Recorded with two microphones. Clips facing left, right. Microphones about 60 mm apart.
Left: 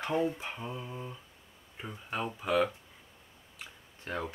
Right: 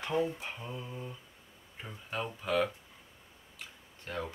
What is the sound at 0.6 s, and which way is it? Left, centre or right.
Speech, centre.